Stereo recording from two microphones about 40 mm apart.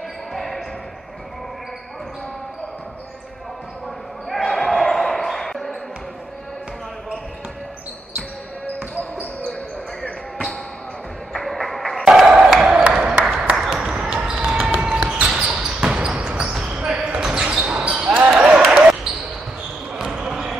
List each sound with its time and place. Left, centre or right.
0.3 s basketball bounce: centre
4.3 s basketball bounce: centre
11.3 s music: centre
12.1 s a sound: right
13.2 s applause: centre
13.6 s a sound: centre
14.8 s basketball bounce: right
16.7 s basketball bounce: centre
18.3 s a sound: right
19.9 s basketball bounce: centre